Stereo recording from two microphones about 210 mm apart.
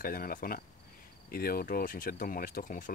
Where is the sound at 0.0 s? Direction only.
45° left (ahead or behind).